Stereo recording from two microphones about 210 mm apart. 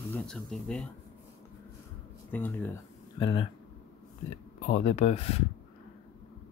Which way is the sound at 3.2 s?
25° left (ahead or behind).